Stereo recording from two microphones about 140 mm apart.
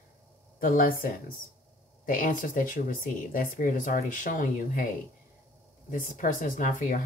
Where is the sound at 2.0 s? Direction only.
75° left (ahead or behind).